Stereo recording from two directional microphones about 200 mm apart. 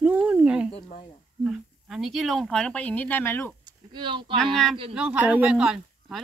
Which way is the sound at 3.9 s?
25° right (ahead or behind).